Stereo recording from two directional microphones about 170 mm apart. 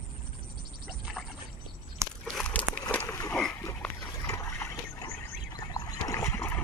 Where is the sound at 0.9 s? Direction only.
Centre (ahead or behind).